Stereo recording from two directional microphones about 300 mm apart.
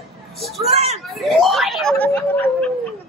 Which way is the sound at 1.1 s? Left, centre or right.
Centre.